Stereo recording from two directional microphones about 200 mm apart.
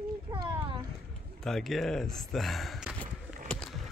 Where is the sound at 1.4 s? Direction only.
Centre (ahead or behind).